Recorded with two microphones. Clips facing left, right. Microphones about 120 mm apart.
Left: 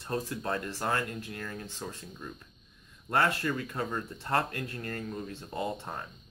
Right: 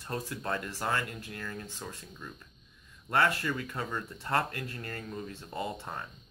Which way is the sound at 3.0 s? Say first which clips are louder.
Even; 25° left (ahead or behind).